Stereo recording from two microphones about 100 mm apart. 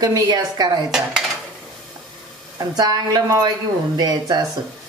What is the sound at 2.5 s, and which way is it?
Speech, 40° right (ahead or behind).